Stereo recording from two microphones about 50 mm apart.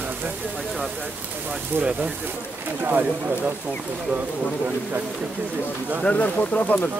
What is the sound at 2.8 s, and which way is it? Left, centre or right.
Speech, right.